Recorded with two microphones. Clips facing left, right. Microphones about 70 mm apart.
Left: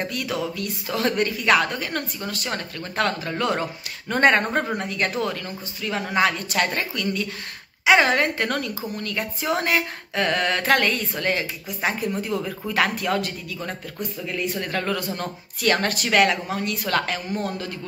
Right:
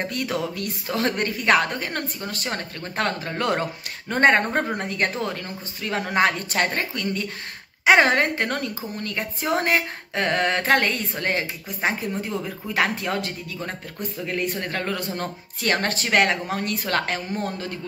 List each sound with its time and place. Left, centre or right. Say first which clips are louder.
0.0 s speech: even; right
4.1 s speech: even; right
5.9 s speech: right 1 dB; right
12.1 s speech: left 2 dB; right
14.2 s speech: right 1 dB; right
14.7 s speech: left 2 dB; right